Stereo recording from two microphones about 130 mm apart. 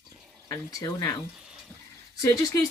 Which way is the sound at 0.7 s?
25° left (ahead or behind).